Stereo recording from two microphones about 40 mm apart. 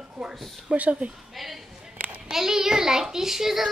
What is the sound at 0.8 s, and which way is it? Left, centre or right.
Speech, right.